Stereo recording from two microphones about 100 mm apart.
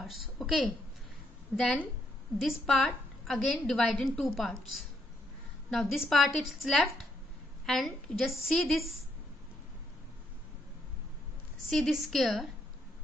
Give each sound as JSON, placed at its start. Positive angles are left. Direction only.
{"t": 0.0, "sound": "a woman's voice", "side_deg": 0}
{"t": 1.5, "sound": "a woman's voice", "side_deg": -15}
{"t": 2.4, "sound": "a woman's voice", "side_deg": 0}
{"t": 5.7, "sound": "a woman's voice", "side_deg": 0}
{"t": 11.7, "sound": "a woman's voice", "side_deg": 0}